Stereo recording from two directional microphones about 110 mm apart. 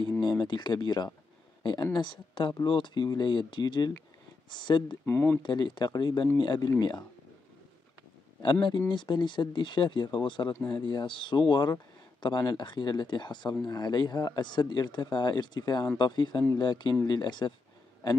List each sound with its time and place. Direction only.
0.2 s speech: 40° left (ahead or behind)
5.0 s speech: 15° left (ahead or behind)
5.4 s speech: 45° left (ahead or behind)
8.9 s speech: 45° left (ahead or behind)